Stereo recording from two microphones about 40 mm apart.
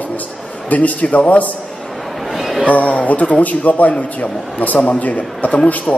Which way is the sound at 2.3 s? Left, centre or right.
Centre.